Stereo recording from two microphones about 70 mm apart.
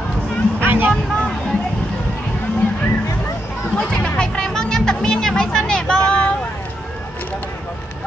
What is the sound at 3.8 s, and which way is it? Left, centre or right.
Music, centre.